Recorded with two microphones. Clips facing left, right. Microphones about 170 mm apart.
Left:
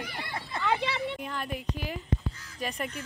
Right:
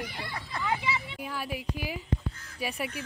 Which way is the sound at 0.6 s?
70° left (ahead or behind).